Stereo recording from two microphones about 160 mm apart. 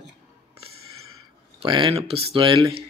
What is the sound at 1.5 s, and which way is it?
Speech, 30° right (ahead or behind).